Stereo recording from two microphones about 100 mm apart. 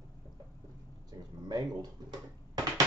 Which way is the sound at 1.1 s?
45° right (ahead or behind).